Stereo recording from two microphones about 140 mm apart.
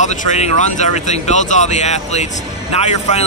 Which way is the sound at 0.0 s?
55° left (ahead or behind).